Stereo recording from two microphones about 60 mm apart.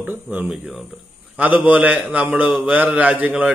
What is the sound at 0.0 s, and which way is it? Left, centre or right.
A man's voice, right.